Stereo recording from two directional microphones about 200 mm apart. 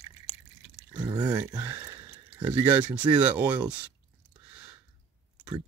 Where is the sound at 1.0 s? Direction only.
20° right (ahead or behind).